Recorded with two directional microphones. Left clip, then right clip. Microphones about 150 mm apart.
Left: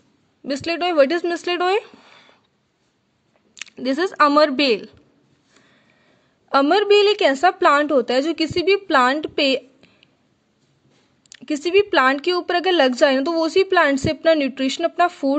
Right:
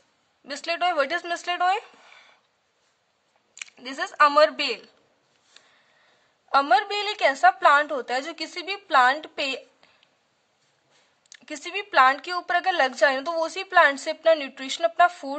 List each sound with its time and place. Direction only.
0.5 s speech: 25° left (ahead or behind)
3.5 s speech: 35° left (ahead or behind)
6.7 s a woman's voice: 30° left (ahead or behind)
11.2 s a woman's voice: 30° left (ahead or behind)